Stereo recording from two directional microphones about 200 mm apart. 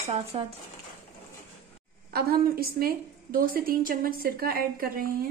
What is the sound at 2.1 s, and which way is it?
Speech, 50° right (ahead or behind).